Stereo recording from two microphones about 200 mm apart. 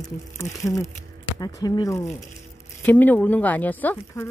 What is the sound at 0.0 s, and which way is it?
Speech, 15° left (ahead or behind).